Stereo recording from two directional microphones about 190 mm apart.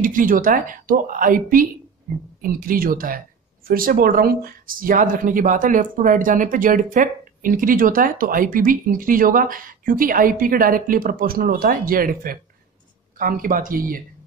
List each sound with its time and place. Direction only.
0.0 s speech: 45° right (ahead or behind)